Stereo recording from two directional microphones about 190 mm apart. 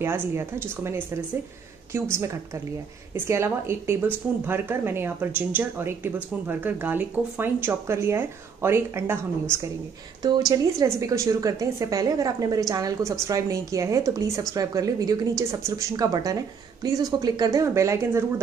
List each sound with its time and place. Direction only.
0.0 s a woman's voice: 15° right (ahead or behind)